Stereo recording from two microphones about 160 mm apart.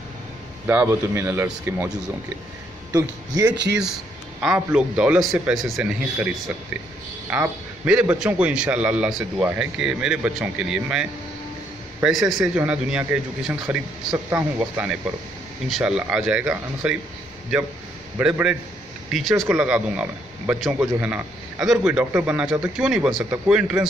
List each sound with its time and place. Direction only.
0.7 s a man's voice: 15° right (ahead or behind)
3.7 s a man's voice: 5° right (ahead or behind)